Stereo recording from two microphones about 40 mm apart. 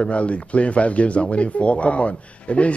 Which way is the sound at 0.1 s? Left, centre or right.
Left.